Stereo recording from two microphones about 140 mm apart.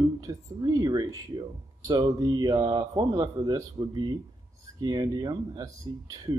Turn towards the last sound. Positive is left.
turn(degrees=-25)  # may be behind; listen again after turning